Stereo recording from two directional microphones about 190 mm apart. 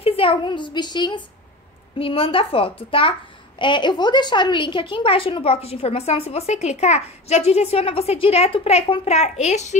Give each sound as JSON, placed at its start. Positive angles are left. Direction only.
{"t": 0.0, "sound": "a child's voice", "side_deg": 30}